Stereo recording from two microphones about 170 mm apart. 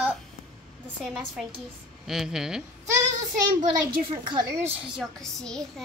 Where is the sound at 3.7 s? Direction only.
30° right (ahead or behind).